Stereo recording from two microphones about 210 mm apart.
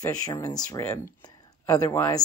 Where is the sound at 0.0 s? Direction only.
15° left (ahead or behind).